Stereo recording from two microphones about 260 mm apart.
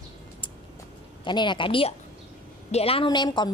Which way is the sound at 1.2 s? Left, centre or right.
Centre.